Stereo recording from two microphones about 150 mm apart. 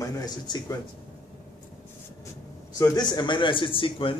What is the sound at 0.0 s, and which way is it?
Speech, 25° left (ahead or behind).